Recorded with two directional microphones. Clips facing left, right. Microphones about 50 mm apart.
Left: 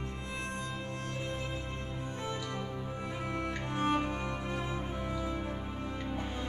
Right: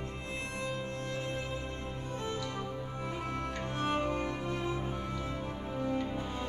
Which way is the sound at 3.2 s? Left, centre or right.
Centre.